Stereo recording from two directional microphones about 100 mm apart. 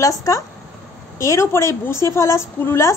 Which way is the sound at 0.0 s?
35° left (ahead or behind).